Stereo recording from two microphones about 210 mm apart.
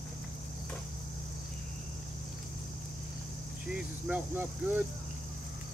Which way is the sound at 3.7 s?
5° right (ahead or behind).